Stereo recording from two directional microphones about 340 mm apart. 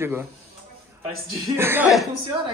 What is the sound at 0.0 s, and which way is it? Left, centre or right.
A man's voice, centre.